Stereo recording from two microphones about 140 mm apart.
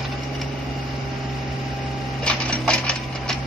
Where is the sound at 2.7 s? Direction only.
5° left (ahead or behind).